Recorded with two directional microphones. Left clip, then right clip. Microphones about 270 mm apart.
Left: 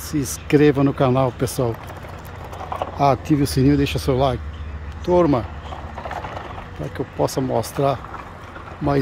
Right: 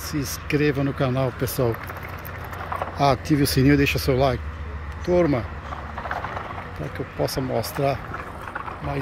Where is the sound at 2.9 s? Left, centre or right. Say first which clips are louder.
Left 3 dB; centre.